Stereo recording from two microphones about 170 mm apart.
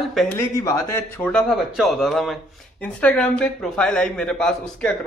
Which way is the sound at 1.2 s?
Centre (ahead or behind).